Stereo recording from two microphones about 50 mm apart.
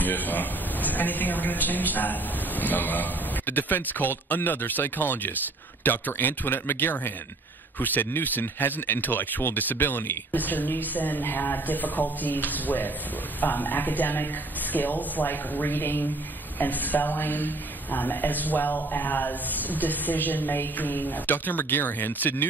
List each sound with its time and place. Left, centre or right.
0.0 s a man's voice: left
16.5 s a man's voice: left